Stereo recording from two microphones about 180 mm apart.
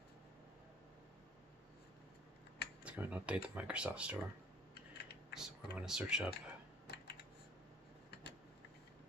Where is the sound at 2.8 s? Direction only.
10° right (ahead or behind).